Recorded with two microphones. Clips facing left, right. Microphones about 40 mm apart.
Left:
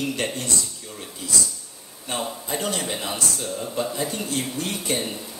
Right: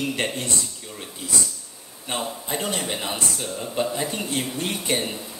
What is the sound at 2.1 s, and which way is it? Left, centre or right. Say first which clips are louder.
A man's voice: even; right.